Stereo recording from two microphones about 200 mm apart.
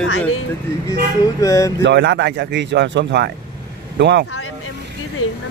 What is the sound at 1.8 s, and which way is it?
Speech, 60° right (ahead or behind).